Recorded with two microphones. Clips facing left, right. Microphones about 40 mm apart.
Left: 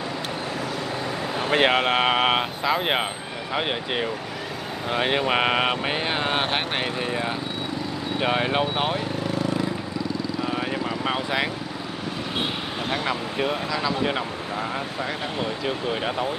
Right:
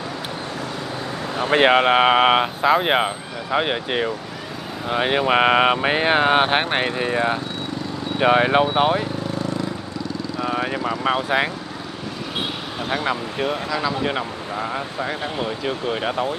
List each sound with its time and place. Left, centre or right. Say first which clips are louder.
1.3 s speech: right 5 dB; centre
10.4 s vehicle: right 6 dB; centre
11.2 s speech: right 4 dB; centre
12.9 s speech: right 4 dB; centre